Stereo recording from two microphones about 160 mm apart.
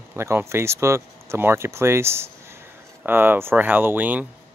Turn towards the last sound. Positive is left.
turn(degrees=-10)  # may be behind; listen again after turning